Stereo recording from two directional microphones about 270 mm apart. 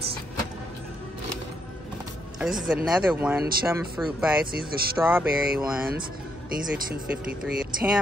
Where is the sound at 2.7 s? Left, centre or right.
Centre.